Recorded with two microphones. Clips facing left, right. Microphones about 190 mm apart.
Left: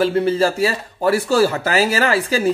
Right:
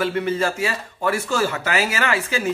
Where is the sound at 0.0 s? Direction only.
35° left (ahead or behind).